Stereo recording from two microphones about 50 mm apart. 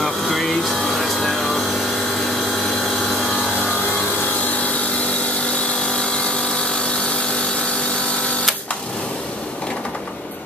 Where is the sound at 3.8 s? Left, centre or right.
Left.